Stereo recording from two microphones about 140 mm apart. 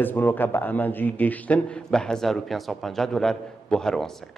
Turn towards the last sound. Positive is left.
turn(degrees=5)  # may be behind; listen again after turning